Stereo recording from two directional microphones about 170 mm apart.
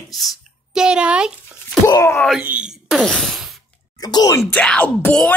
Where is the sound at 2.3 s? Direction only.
5° right (ahead or behind).